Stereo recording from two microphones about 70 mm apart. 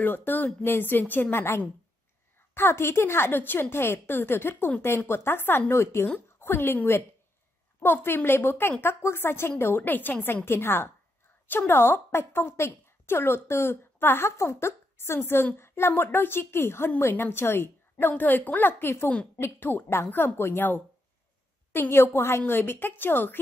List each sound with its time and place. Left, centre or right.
0.0 s a woman's voice: left